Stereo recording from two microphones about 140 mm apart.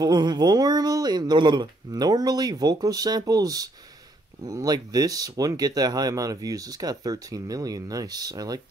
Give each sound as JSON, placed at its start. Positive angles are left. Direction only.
{"t": 0.0, "sound": "speech", "side_deg": -30}